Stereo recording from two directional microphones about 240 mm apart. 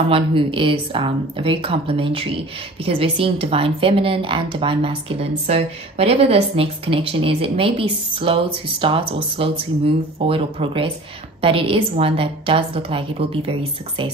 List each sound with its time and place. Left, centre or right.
0.1 s speech: right